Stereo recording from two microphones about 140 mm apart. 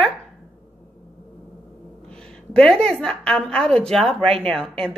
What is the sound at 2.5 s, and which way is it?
Speech, 5° left (ahead or behind).